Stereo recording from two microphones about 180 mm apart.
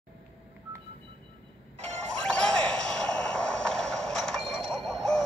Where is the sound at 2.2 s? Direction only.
5° left (ahead or behind).